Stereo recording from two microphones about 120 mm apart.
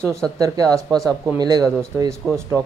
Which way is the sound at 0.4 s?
30° right (ahead or behind).